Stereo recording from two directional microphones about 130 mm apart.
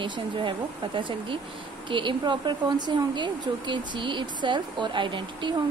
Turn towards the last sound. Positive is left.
turn(degrees=-40)  # may be behind; listen again after turning